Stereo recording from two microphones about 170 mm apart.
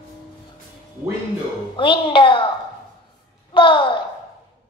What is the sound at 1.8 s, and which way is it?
Speech, 30° left (ahead or behind).